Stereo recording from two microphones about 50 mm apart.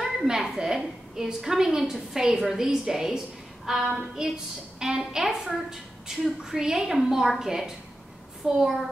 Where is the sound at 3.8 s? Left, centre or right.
Centre.